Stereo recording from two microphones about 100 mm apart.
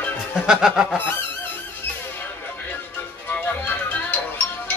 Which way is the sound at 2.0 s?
20° left (ahead or behind).